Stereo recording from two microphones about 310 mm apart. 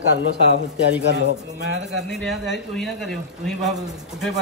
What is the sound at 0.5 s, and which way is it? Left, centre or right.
A man's voice, right.